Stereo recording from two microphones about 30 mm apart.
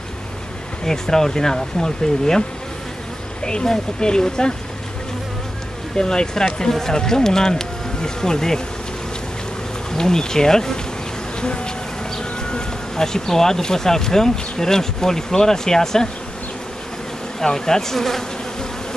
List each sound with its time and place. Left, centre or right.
0.8 s speech: centre
3.6 s speech: left
5.9 s speech: left
9.9 s speech: centre
11.4 s speech: left
17.4 s insect: centre